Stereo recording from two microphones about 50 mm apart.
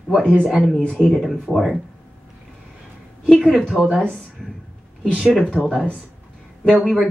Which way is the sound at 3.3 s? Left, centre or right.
Centre.